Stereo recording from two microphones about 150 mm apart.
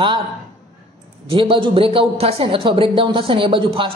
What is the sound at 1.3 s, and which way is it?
A man's voice, 35° right (ahead or behind).